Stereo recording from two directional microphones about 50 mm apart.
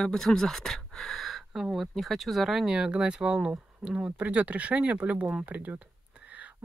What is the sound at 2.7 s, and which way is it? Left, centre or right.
Speech, centre.